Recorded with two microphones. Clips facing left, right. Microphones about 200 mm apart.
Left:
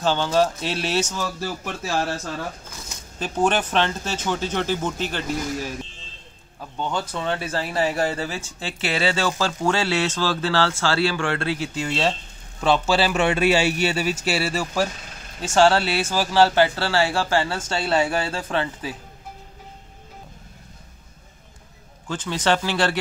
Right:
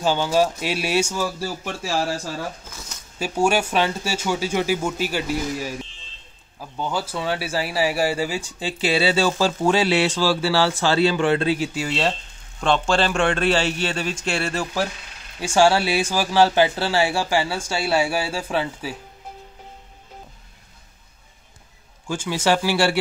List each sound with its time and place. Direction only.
0.0 s speech: 10° right (ahead or behind)
15.4 s speech: 15° right (ahead or behind)
22.0 s speech: 10° right (ahead or behind)